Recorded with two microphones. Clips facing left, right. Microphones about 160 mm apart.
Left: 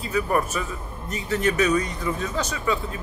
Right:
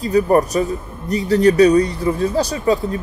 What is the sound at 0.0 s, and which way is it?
A man's voice, 40° right (ahead or behind).